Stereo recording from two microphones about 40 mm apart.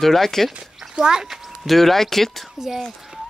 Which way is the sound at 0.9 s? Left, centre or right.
Centre.